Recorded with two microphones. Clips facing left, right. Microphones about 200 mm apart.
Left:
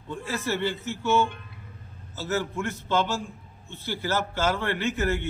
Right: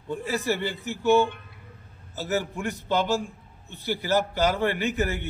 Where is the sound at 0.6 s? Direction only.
15° right (ahead or behind).